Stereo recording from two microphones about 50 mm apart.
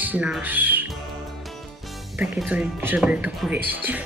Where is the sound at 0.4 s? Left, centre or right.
Right.